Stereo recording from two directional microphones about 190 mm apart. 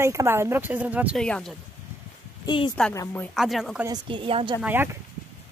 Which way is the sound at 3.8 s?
25° right (ahead or behind).